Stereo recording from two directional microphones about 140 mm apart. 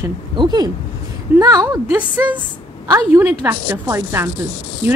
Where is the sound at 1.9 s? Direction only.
10° right (ahead or behind).